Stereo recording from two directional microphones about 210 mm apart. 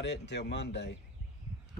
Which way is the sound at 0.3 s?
55° left (ahead or behind).